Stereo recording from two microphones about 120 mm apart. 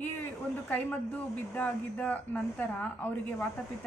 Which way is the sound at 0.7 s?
15° left (ahead or behind).